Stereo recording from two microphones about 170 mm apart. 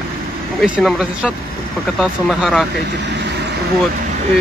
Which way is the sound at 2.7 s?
80° right.